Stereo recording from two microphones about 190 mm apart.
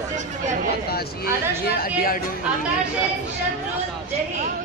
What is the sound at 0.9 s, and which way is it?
A woman's voice, 55° left (ahead or behind).